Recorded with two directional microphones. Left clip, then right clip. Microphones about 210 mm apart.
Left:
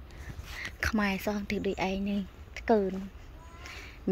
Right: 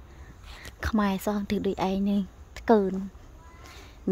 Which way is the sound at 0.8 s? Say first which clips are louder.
Right 2 dB; 25° right (ahead or behind).